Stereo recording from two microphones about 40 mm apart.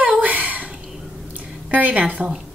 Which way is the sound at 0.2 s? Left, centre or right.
Right.